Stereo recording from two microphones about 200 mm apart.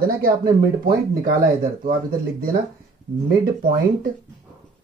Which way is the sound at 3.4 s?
45° right (ahead or behind).